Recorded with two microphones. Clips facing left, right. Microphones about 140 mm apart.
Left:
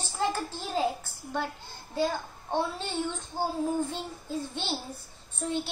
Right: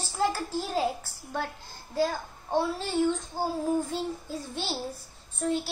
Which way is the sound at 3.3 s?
5° right (ahead or behind).